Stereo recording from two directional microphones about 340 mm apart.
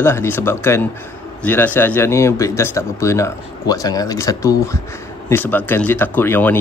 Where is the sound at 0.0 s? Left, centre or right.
Centre.